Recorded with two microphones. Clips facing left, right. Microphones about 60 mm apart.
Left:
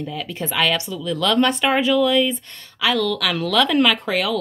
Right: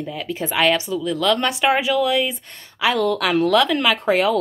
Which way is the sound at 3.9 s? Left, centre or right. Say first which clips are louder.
Right 4 dB; right.